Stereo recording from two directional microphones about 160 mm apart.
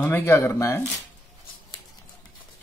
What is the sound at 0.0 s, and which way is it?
Speech, 15° left (ahead or behind).